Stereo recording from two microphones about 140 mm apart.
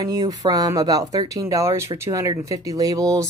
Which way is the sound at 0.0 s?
25° right (ahead or behind).